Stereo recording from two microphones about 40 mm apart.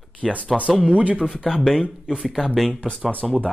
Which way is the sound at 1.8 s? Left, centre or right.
Right.